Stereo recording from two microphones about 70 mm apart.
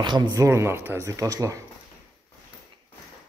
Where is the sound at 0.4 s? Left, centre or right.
Right.